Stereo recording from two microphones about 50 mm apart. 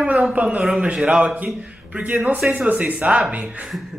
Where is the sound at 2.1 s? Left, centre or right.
Centre.